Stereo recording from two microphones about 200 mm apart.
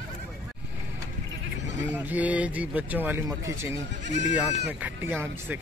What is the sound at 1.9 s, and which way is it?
Speech, 10° right (ahead or behind).